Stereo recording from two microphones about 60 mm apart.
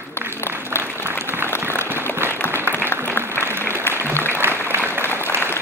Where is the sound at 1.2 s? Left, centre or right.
Right.